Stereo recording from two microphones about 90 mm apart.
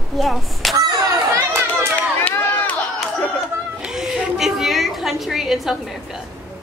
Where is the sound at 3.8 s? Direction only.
5° right (ahead or behind).